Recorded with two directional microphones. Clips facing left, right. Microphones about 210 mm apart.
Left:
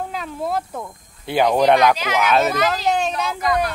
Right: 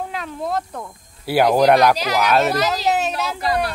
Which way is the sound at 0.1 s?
Centre (ahead or behind).